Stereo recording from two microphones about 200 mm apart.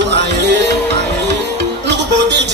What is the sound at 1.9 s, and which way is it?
Music, 60° right (ahead or behind).